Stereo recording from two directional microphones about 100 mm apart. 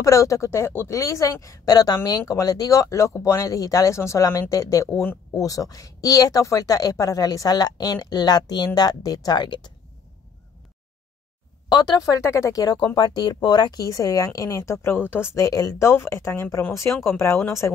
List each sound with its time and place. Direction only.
0.0 s speech: 30° left (ahead or behind); by 9.7 s 50° left (ahead or behind)
11.7 s speech: 45° left (ahead or behind); by 15.2 s 20° left (ahead or behind)
15.3 s speech: 35° left (ahead or behind)